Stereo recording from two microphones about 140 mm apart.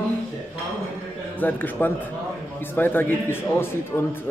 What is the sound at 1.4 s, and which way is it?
A man's voice, 15° left (ahead or behind).